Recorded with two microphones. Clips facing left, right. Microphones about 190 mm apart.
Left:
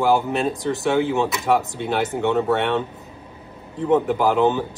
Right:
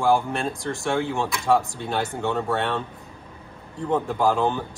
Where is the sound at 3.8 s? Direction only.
20° left (ahead or behind).